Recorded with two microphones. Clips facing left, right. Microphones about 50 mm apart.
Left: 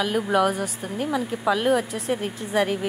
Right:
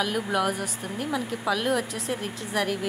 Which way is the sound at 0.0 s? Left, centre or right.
Centre.